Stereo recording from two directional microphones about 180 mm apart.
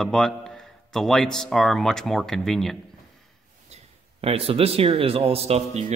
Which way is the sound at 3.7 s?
35° right (ahead or behind).